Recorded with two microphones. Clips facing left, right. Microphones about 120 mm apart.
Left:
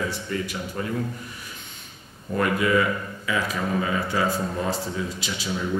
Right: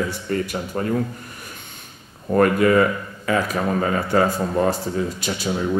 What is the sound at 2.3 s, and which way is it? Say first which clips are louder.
Speech: right 6 dB; 50° right (ahead or behind).